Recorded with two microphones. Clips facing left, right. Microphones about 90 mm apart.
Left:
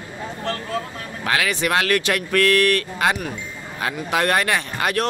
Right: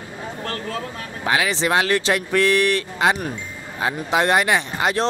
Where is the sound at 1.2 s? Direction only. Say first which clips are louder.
Right 1 dB; 20° right (ahead or behind).